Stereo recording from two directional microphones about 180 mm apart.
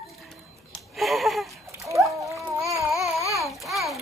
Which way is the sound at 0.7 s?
Centre (ahead or behind).